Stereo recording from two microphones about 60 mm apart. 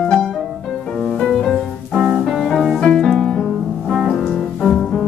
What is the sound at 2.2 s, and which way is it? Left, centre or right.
Music, centre.